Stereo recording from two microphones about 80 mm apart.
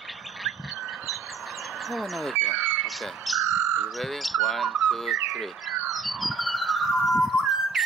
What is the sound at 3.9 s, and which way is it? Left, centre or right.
Speech, centre.